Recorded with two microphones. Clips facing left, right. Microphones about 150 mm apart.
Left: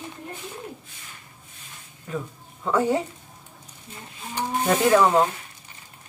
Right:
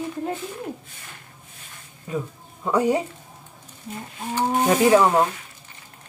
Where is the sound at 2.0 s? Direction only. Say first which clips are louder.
Right 3 dB; 15° right (ahead or behind).